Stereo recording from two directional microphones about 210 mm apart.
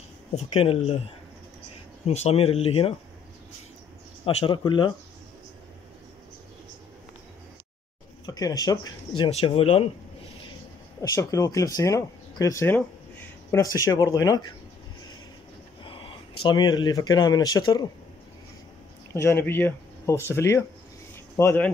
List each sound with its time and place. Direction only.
0.4 s speech: 30° left (ahead or behind)
2.0 s speech: 30° left (ahead or behind)
4.4 s speech: 25° left (ahead or behind)
8.3 s speech: 15° left (ahead or behind)
11.0 s speech: 15° left (ahead or behind)
15.8 s speech: 20° left (ahead or behind)
19.1 s speech: 10° left (ahead or behind)